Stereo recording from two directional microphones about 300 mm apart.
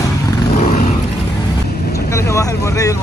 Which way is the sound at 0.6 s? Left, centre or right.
Left.